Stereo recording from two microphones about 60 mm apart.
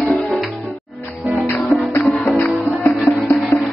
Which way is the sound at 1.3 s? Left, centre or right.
Right.